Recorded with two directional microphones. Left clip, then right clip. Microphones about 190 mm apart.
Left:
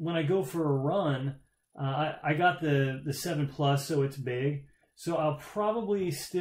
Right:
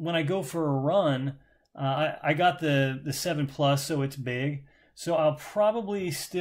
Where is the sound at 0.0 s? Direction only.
40° right (ahead or behind).